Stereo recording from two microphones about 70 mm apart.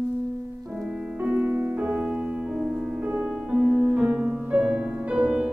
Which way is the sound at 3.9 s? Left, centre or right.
Centre.